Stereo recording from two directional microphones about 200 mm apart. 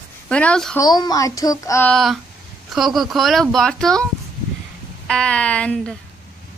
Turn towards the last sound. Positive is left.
turn(degrees=5)  # may be behind; listen again after turning